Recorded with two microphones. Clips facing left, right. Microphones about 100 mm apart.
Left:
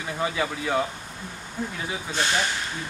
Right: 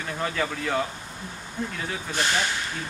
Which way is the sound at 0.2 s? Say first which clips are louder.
Left 1 dB; 10° left (ahead or behind).